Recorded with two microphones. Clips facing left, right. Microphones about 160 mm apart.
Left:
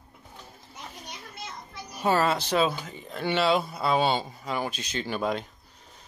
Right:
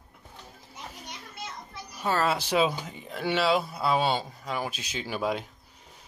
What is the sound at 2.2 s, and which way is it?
Speech, 10° right (ahead or behind).